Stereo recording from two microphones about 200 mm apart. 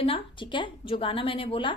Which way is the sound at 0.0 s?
25° left (ahead or behind).